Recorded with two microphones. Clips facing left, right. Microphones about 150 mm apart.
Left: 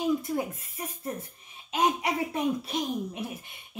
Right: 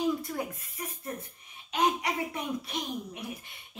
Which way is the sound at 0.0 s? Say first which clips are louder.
Left 3 dB; 20° left (ahead or behind).